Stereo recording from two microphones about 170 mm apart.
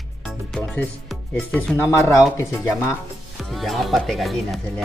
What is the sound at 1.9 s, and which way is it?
Speech, 15° left (ahead or behind).